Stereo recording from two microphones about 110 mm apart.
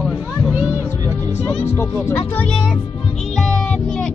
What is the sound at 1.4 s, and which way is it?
Music, 25° left (ahead or behind).